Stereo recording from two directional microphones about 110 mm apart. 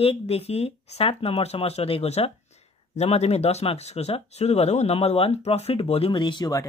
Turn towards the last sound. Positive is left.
turn(degrees=40)  # may be behind; listen again after turning